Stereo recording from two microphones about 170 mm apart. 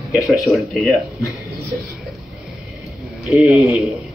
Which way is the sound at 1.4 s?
20° right (ahead or behind).